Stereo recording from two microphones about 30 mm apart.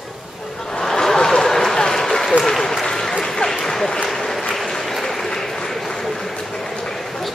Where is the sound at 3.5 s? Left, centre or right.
Centre.